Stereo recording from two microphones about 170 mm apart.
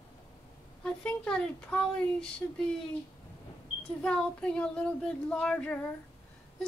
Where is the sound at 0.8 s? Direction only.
5° left (ahead or behind).